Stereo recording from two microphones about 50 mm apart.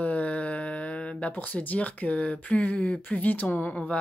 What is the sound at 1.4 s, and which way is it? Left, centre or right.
Speech, left.